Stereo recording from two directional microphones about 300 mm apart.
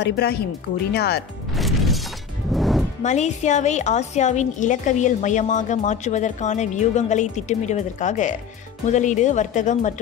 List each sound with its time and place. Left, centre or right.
0.0 s speech: left
1.5 s music: centre
3.0 s a woman's voice: left